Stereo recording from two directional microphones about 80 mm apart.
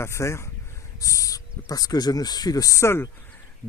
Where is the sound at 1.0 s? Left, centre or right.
Left.